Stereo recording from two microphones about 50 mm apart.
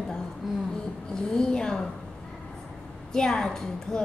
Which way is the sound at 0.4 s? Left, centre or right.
Centre.